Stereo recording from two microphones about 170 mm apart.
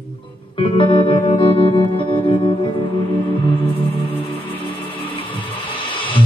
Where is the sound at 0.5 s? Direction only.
30° left (ahead or behind).